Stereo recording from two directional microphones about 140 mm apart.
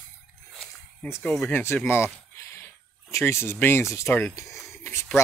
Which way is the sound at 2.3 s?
20° left (ahead or behind).